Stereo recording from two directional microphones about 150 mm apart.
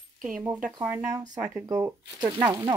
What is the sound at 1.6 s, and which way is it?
Speech, 20° right (ahead or behind).